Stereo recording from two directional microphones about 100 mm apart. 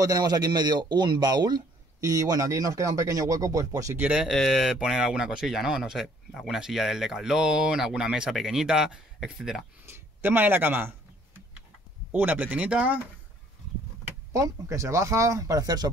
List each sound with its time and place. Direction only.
0.0 s a man's voice: 40° right (ahead or behind)
4.0 s speech: 10° right (ahead or behind)
4.3 s speech: centre (ahead or behind)
9.8 s speech: 20° right (ahead or behind)
12.1 s speech: 15° right (ahead or behind)
14.3 s a man's voice: 30° right (ahead or behind)